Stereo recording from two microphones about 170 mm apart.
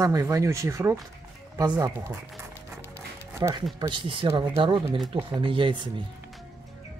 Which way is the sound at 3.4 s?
25° right (ahead or behind).